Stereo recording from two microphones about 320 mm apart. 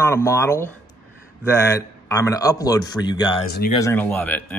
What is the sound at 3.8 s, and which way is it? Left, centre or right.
Speech, centre.